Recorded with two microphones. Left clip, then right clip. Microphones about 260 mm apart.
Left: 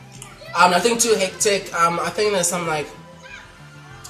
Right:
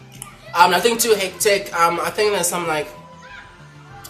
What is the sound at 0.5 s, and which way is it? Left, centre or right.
Speech, centre.